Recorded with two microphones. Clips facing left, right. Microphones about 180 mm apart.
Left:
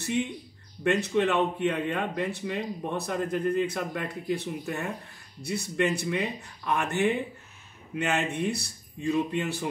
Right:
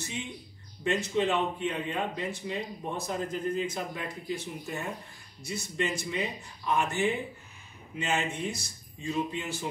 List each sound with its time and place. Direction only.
0.8 s speech: 60° left (ahead or behind)